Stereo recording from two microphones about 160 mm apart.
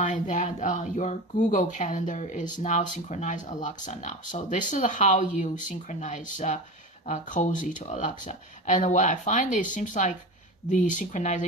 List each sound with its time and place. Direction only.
0.0 s speech: 50° left (ahead or behind)